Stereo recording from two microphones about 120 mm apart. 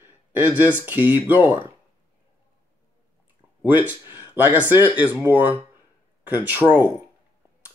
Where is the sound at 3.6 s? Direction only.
15° right (ahead or behind).